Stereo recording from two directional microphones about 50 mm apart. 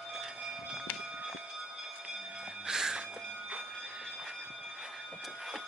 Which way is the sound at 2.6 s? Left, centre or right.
Centre.